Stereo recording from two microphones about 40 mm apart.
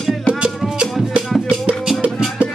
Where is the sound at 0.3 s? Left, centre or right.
Right.